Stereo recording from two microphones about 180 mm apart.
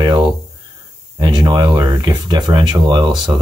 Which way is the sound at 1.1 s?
20° right (ahead or behind).